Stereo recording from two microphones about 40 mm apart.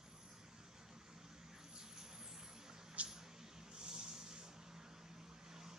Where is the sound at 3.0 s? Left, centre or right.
Centre.